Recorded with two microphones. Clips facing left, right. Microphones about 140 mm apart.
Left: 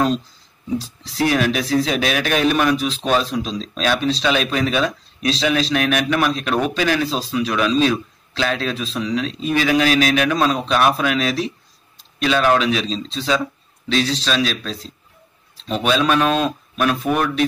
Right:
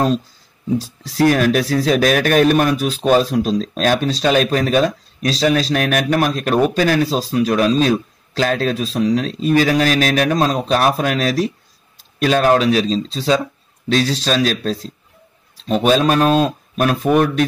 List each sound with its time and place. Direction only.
0.7 s a man's voice: 45° right (ahead or behind)